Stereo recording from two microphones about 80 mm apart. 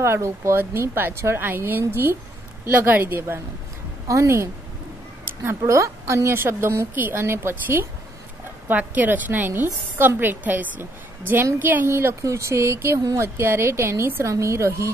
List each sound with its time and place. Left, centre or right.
0.0 s a woman's voice: right
5.2 s a sound: right
5.6 s a woman's voice: right